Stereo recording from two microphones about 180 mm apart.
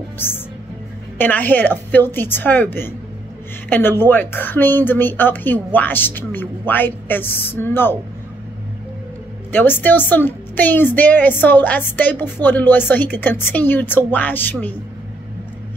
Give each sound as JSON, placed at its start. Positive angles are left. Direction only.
{"t": 0.2, "sound": "a woman's voice", "side_deg": 10}
{"t": 9.5, "sound": "a woman's voice", "side_deg": 10}